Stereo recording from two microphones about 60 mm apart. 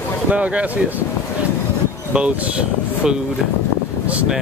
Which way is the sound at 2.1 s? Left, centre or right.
Centre.